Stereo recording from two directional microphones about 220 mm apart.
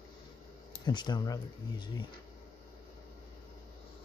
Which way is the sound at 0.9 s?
20° left (ahead or behind).